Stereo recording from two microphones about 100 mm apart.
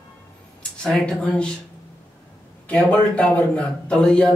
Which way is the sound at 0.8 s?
5° left (ahead or behind).